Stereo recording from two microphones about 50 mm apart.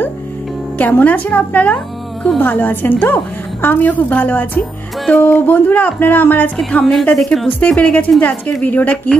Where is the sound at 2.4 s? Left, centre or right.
Left.